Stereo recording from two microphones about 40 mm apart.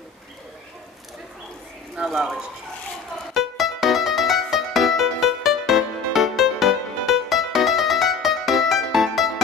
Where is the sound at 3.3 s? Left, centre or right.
Centre.